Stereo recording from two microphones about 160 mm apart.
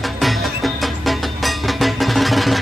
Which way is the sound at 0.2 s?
Centre (ahead or behind).